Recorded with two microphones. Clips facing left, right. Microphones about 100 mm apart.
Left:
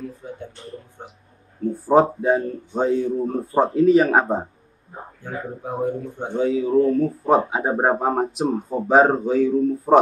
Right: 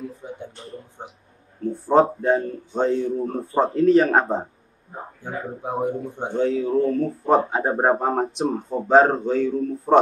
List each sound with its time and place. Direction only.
0.2 s a sound: 20° right (ahead or behind)
1.6 s speech: 5° left (ahead or behind)
5.2 s speech: 20° right (ahead or behind)
6.3 s speech: centre (ahead or behind)